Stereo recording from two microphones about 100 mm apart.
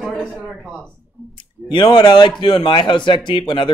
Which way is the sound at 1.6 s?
50° left (ahead or behind).